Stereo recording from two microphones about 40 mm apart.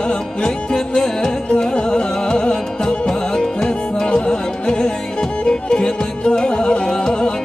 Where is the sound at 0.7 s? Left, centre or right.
Centre.